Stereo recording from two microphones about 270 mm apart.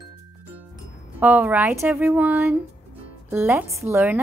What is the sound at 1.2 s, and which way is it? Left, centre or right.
Speech, centre.